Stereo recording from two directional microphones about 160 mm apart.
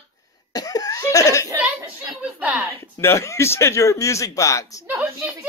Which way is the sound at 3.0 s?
15° left (ahead or behind).